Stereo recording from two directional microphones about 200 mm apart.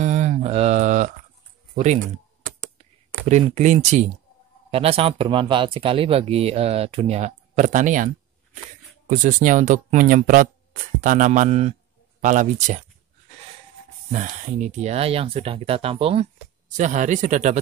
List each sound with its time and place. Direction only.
0.0 s a sound: 35° right (ahead or behind)
3.3 s speech: 35° right (ahead or behind)
14.1 s speech: 40° right (ahead or behind)